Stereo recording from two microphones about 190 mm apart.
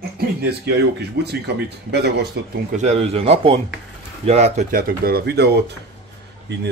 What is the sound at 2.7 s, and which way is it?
A man's voice, 35° right (ahead or behind).